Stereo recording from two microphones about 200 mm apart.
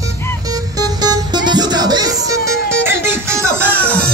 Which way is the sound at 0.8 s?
20° right (ahead or behind).